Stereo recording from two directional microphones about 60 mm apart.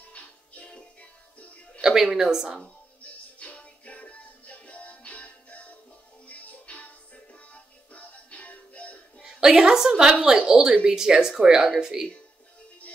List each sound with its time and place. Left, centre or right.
0.0 s music: left
1.8 s a woman's voice: centre
2.6 s music: left
9.2 s a woman's voice: centre